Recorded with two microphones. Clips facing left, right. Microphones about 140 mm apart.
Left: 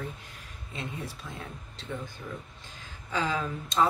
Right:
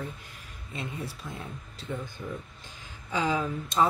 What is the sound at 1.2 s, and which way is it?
Speech, 15° right (ahead or behind).